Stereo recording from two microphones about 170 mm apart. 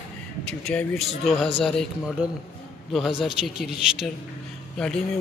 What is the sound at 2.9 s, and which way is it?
Speech, centre (ahead or behind).